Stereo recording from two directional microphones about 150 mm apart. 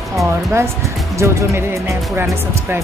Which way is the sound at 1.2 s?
20° right (ahead or behind).